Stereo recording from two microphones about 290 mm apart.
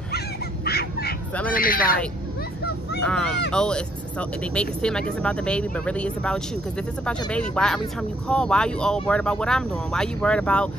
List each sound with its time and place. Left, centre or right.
0.7 s bird: left
1.5 s speech: left
3.0 s speech: centre